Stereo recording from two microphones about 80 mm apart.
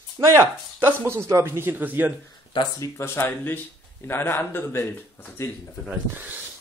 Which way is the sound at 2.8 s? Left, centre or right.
Left.